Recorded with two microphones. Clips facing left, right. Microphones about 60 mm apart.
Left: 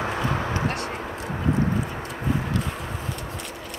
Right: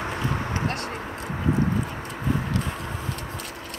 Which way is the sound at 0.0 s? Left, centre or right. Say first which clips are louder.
Left 2 dB; left.